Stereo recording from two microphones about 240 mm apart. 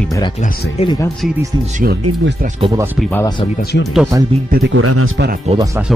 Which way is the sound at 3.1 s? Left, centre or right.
Centre.